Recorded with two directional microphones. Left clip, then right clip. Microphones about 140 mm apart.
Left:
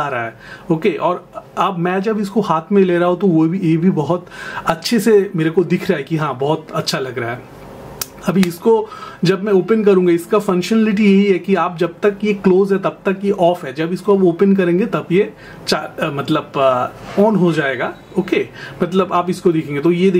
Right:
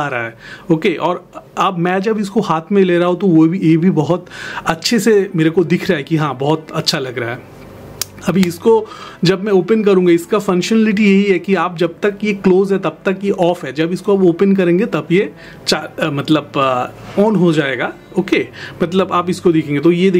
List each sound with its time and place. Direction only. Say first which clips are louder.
0.0 s speech: right 1 dB; 35° right (ahead or behind)
8.5 s speech: right 2 dB; 30° right (ahead or behind)